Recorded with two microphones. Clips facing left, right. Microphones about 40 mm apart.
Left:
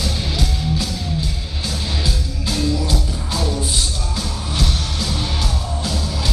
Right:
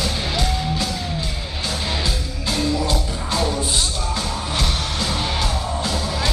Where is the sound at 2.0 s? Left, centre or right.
Centre.